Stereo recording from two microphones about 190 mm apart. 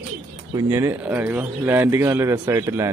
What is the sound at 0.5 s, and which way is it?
Speech, 15° right (ahead or behind).